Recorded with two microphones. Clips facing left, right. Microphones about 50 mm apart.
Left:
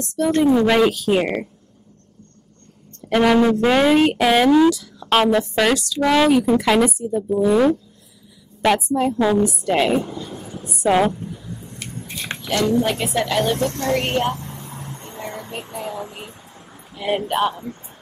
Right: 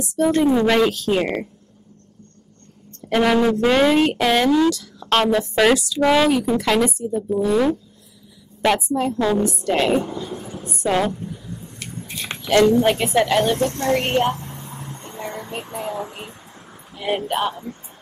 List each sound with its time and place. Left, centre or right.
0.0 s speech: centre
0.4 s speech: centre
3.1 s a woman's voice: centre
5.6 s speech: centre
6.1 s a woman's voice: centre
10.9 s speech: centre
12.9 s speech: centre
13.4 s speech: centre
16.9 s a man's voice: centre